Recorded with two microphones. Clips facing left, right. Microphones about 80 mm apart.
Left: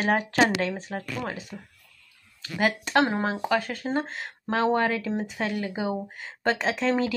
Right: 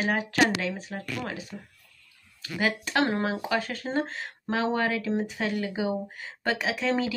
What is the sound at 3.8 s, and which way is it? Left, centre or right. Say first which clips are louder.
Speech: left 1 dB; centre.